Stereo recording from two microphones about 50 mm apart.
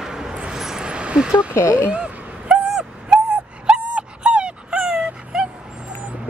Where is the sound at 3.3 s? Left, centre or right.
Right.